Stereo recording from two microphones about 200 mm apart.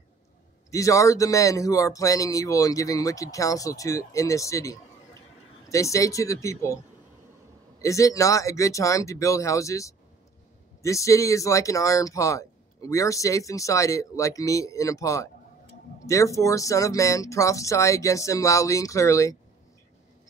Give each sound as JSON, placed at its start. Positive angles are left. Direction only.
{"t": 0.7, "sound": "speech", "side_deg": 15}
{"t": 7.8, "sound": "speech", "side_deg": 15}